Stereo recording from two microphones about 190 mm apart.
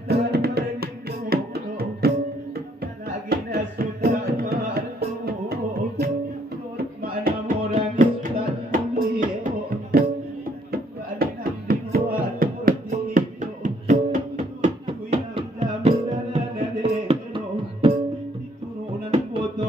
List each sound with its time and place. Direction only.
0.1 s a sound: 55° right (ahead or behind)
1.3 s music: 55° right (ahead or behind)
3.3 s music: 55° right (ahead or behind); by 17.4 s 30° right (ahead or behind)
19.0 s music: 30° right (ahead or behind)